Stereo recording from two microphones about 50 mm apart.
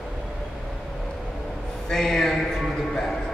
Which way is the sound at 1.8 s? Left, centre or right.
Centre.